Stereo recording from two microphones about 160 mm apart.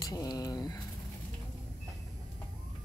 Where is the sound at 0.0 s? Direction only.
20° left (ahead or behind).